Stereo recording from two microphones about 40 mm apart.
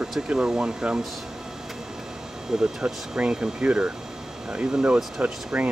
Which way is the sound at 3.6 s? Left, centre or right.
Right.